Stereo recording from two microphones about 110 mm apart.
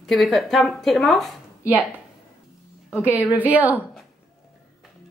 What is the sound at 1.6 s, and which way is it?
Speech, 15° right (ahead or behind).